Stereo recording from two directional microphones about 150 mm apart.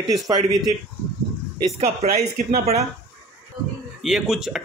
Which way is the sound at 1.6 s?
45° right (ahead or behind).